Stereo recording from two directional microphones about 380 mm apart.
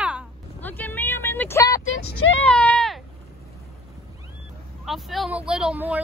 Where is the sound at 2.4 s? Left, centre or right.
Centre.